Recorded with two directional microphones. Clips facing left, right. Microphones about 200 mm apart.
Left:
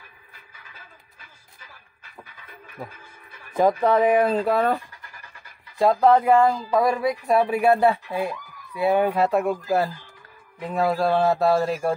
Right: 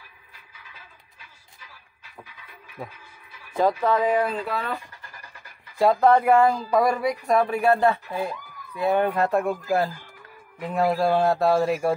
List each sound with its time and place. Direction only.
2.8 s speech: centre (ahead or behind)
3.8 s speech: 20° left (ahead or behind)
4.3 s speech: 40° left (ahead or behind)
5.8 s speech: centre (ahead or behind)
10.6 s speech: 10° right (ahead or behind)
11.1 s speech: 5° left (ahead or behind)